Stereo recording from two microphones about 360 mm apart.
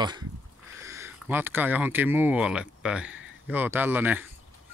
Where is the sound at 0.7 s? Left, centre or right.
Centre.